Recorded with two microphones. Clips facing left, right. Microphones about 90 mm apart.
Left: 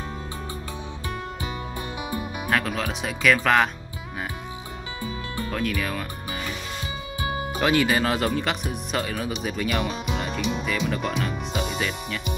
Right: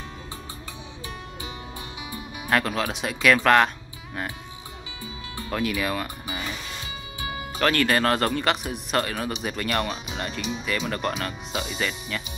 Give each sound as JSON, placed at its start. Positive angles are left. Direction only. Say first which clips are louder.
{"t": 2.0, "sound": "music", "louder": "left 6 dB", "side_deg": 50}
{"t": 2.5, "sound": "speech", "louder": "right 2 dB", "side_deg": 0}
{"t": 5.0, "sound": "music", "louder": "left 6 dB", "side_deg": 50}
{"t": 5.5, "sound": "speech", "louder": "right 2 dB", "side_deg": -5}
{"t": 7.2, "sound": "music", "louder": "left 5 dB", "side_deg": 35}
{"t": 7.5, "sound": "speech", "louder": "even", "side_deg": 10}
{"t": 10.1, "sound": "music", "louder": "left 3 dB", "side_deg": 0}
{"t": 10.9, "sound": "speech", "louder": "left 1 dB", "side_deg": 0}